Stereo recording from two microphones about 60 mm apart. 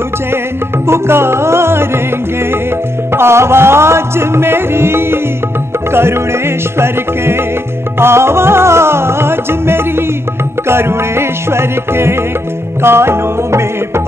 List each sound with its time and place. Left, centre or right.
0.8 s music: right
3.1 s music: right